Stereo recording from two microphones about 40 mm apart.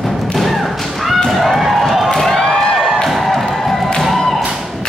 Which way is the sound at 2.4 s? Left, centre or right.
Centre.